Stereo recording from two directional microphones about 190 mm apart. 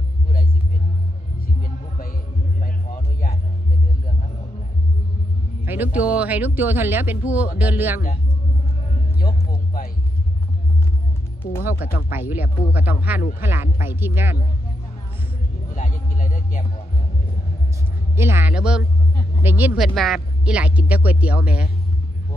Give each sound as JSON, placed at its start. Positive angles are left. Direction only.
{"t": 1.4, "sound": "music", "side_deg": 50}
{"t": 5.7, "sound": "speech", "side_deg": -10}
{"t": 11.8, "sound": "speech", "side_deg": -10}
{"t": 15.7, "sound": "a sound", "side_deg": 45}
{"t": 18.1, "sound": "speech", "side_deg": -10}